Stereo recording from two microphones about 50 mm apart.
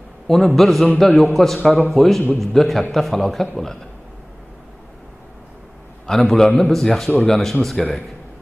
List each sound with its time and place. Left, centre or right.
0.3 s a man's voice: centre
6.0 s a man's voice: centre